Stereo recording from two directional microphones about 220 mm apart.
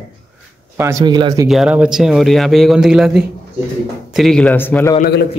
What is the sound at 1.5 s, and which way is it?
Speech, 5° right (ahead or behind).